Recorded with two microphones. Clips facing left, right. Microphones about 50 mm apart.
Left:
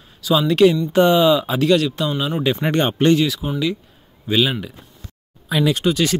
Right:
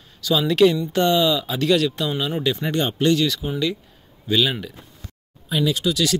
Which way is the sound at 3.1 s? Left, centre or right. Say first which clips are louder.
Left 2 dB; centre.